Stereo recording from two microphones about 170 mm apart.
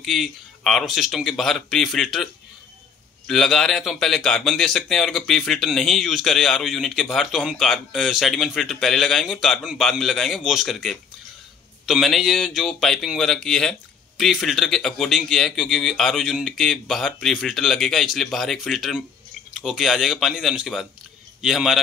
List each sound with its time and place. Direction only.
0.0 s a man's voice: centre (ahead or behind)
3.3 s a man's voice: centre (ahead or behind)